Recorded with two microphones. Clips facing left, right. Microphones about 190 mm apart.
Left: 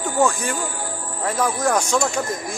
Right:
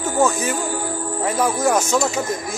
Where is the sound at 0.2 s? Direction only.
5° right (ahead or behind).